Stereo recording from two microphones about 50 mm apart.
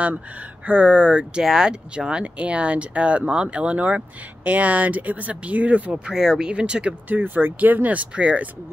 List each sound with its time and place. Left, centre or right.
0.7 s speech: right
1.4 s speech: centre; by 5.9 s right
6.0 s speech: centre
6.9 s speech: right